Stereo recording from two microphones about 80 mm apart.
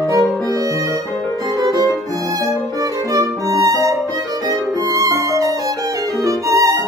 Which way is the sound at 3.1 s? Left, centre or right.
Right.